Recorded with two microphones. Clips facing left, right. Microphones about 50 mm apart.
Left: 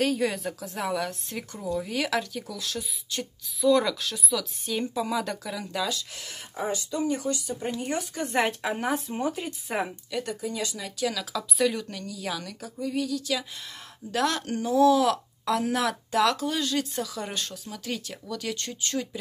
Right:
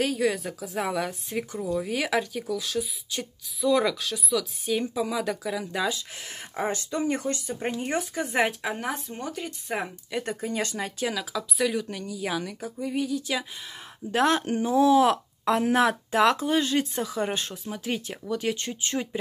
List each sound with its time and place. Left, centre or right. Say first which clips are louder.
0.0 s a woman's voice: even; centre
5.8 s speech: even; right
6.5 s speech: right 1 dB; right
8.1 s a woman's voice: even; centre
10.1 s speech: right 2 dB; right
11.0 s speech: left 2 dB; right
11.3 s a woman's voice: left 1 dB; centre; by 19.0 s right